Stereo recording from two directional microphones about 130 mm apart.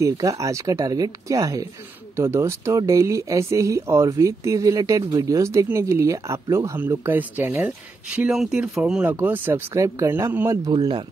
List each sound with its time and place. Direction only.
0.0 s speech: 25° right (ahead or behind)
10.7 s speech: 35° right (ahead or behind)